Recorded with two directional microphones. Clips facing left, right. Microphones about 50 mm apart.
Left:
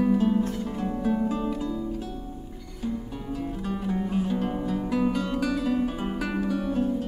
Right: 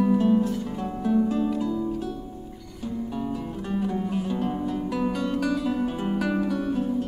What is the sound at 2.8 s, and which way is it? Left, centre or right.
Music, centre.